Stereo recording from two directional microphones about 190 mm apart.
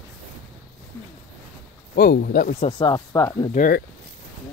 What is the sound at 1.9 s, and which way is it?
Speech, 50° left (ahead or behind).